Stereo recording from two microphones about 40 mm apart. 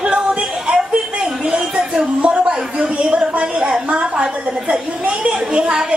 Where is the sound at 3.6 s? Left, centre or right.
Centre.